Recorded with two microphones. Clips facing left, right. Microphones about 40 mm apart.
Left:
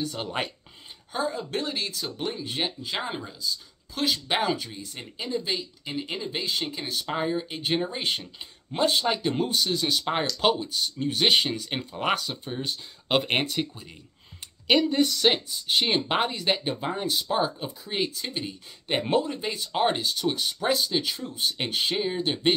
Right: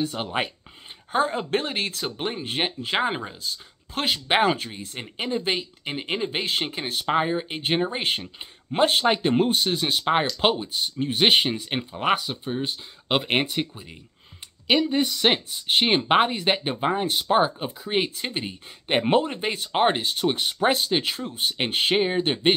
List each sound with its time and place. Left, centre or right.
0.0 s speech: right
1.1 s speech: right
12.0 s speech: centre
15.5 s speech: right